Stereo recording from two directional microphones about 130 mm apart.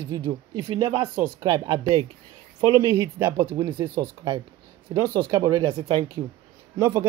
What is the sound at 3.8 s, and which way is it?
Speech, 20° right (ahead or behind).